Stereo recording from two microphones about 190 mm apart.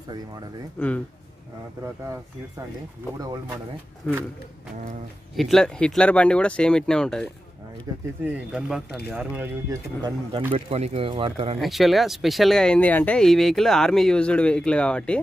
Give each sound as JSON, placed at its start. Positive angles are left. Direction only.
{"t": 0.7, "sound": "speech", "side_deg": 5}
{"t": 4.0, "sound": "speech", "side_deg": 5}
{"t": 5.3, "sound": "speech", "side_deg": 0}
{"t": 9.7, "sound": "speech", "side_deg": -20}
{"t": 11.6, "sound": "speech", "side_deg": 0}